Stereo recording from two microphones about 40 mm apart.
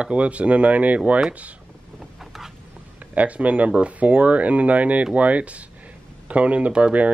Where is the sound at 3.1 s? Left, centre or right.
Right.